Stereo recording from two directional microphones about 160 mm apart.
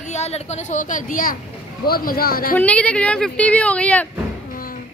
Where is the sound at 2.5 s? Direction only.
10° left (ahead or behind).